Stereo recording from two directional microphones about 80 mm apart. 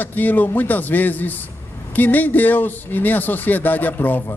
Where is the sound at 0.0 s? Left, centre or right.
Left.